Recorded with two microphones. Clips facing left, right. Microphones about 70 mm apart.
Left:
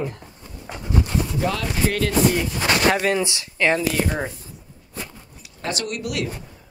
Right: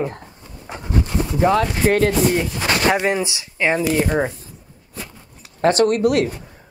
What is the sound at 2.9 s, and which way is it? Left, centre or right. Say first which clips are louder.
Speech: right 2 dB; centre.